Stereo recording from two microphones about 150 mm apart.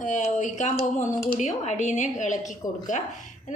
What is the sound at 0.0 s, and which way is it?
A woman's voice, 55° left (ahead or behind).